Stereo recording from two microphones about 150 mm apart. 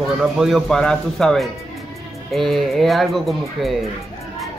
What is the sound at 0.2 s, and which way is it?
A man's voice, 5° right (ahead or behind).